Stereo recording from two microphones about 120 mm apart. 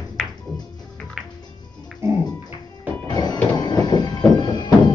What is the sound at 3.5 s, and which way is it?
Train, 35° left (ahead or behind).